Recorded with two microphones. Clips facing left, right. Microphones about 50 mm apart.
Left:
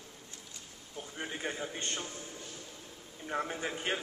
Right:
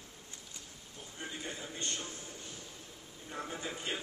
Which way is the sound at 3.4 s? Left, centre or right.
Left.